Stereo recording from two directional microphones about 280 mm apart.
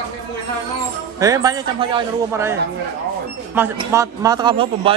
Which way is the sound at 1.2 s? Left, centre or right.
Centre.